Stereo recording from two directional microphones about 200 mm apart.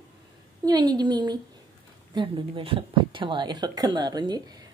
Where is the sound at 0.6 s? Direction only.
20° right (ahead or behind).